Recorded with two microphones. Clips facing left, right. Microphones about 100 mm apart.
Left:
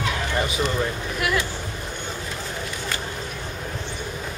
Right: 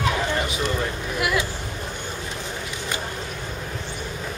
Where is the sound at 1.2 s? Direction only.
5° right (ahead or behind).